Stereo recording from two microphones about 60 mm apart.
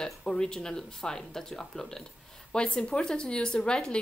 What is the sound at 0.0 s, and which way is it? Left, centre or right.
Speech, centre.